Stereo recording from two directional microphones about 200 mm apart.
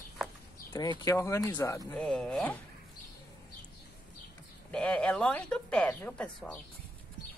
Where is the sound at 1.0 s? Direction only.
15° left (ahead or behind).